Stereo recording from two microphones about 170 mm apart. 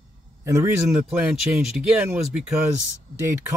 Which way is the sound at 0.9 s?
5° right (ahead or behind).